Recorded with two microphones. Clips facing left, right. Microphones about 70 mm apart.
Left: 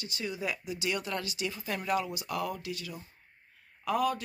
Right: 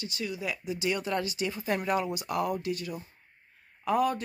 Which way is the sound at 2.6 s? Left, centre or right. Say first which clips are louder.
Right 6 dB; right.